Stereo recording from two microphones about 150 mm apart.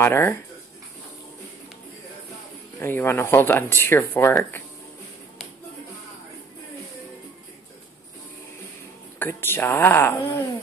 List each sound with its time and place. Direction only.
0.0 s speech: 15° left (ahead or behind)
2.8 s speech: 15° left (ahead or behind)
9.2 s speech: 15° left (ahead or behind)